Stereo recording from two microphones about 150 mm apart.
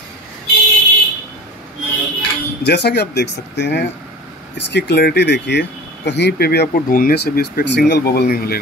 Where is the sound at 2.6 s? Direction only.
90° left.